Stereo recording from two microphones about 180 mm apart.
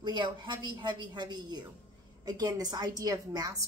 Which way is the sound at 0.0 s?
25° right (ahead or behind).